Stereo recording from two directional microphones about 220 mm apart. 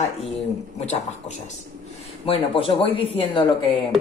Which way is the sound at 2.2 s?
25° left (ahead or behind).